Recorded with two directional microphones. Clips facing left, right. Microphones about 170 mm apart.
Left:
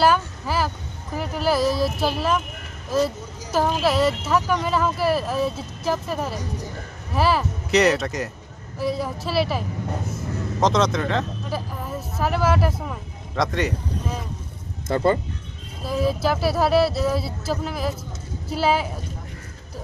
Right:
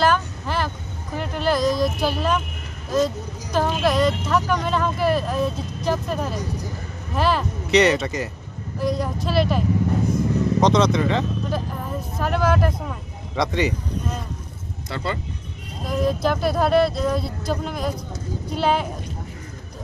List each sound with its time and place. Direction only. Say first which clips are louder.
0.0 s vehicle: left 1 dB; 5° left (ahead or behind)
1.1 s speech: even; 5° left (ahead or behind)
3.5 s speech: even; 5° left (ahead or behind)
14.9 s speech: left 8 dB; 45° left (ahead or behind)
15.9 s speech: right 1 dB; 5° left (ahead or behind)